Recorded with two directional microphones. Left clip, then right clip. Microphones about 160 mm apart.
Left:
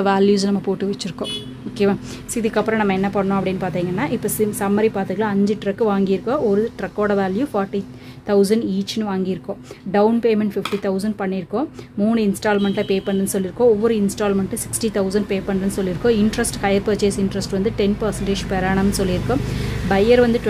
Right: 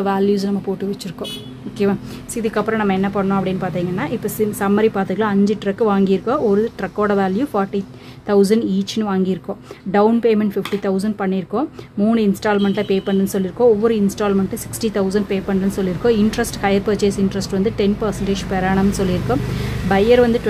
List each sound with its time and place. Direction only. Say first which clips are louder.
0.0 s speech: left 1 dB; 25° left (ahead or behind)
1.8 s a woman's voice: even; 10° left (ahead or behind)
4.6 s a woman's voice: right 4 dB; 5° right (ahead or behind)